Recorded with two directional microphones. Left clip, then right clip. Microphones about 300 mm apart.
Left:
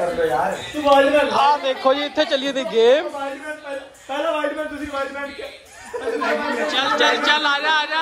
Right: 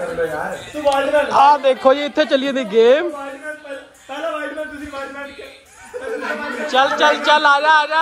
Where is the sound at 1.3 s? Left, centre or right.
Centre.